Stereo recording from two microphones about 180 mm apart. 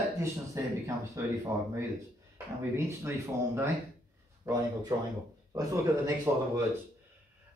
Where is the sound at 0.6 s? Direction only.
15° right (ahead or behind).